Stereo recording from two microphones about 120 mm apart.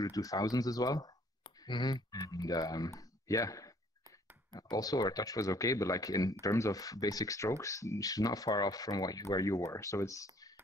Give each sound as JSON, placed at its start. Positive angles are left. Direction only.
{"t": 0.0, "sound": "speech", "side_deg": 30}